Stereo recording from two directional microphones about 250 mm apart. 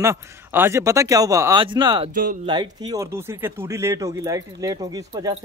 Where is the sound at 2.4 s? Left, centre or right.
Centre.